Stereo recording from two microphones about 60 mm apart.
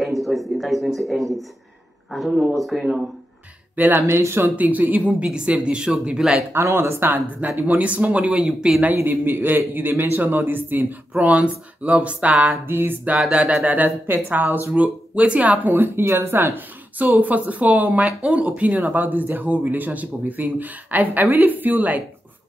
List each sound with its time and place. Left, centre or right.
0.0 s speech: centre
3.7 s speech: right
4.2 s speech: right
4.6 s speech: right; by 6.4 s centre
6.5 s speech: right; by 8.8 s centre
8.9 s speech: right
11.1 s speech: right
12.6 s speech: right
13.3 s speech: right
14.7 s speech: right